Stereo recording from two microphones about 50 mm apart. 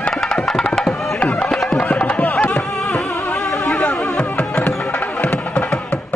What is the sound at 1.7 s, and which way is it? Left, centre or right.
Music, left.